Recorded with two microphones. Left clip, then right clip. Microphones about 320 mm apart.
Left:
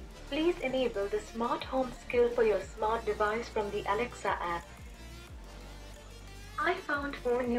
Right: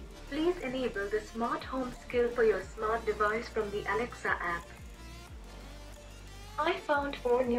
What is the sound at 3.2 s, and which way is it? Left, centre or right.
Speech, centre.